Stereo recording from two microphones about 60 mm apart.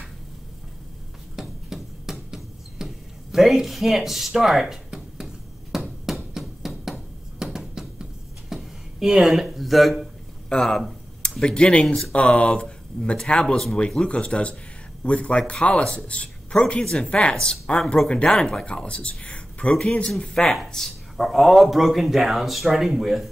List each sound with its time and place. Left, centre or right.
1.3 s a sound: centre
7.5 s music: centre
10.5 s speech: centre
12.1 s speech: left; by 23.3 s centre